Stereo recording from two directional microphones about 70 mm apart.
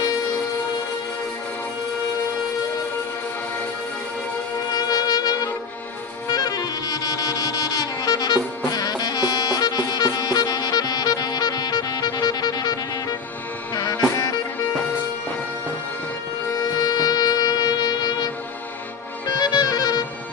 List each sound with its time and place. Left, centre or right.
4.7 s music: left
13.7 s music: left
16.8 s music: left